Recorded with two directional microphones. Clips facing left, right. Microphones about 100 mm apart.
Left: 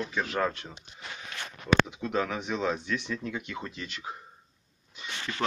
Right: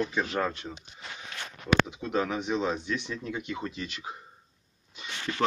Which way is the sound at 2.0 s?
20° right (ahead or behind).